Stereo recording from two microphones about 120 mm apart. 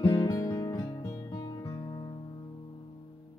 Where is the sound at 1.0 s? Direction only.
25° left (ahead or behind).